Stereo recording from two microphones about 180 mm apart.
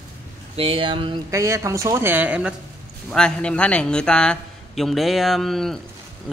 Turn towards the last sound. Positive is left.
turn(degrees=0)  # may be behind; listen again after turning